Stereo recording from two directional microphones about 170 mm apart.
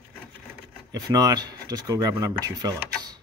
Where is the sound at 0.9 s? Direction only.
20° right (ahead or behind).